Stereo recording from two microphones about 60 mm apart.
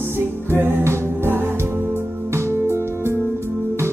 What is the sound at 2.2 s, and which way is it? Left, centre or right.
Music, right.